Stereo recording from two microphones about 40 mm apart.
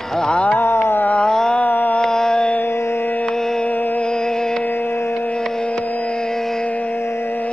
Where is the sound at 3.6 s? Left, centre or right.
Left.